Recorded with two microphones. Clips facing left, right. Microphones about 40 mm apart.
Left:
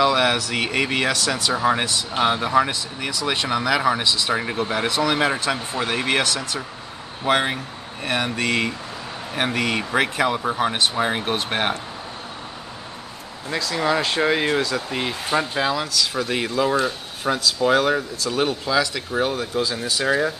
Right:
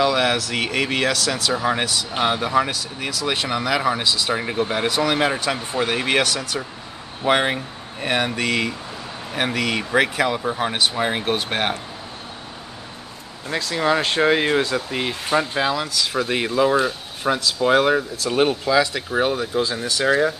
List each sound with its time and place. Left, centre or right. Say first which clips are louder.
0.0 s a sound: left 1 dB; centre
0.4 s speech: even; centre
8.4 s speech: even; centre
13.5 s speech: right 1 dB; centre
18.2 s speech: right 3 dB; right; by 20.3 s centre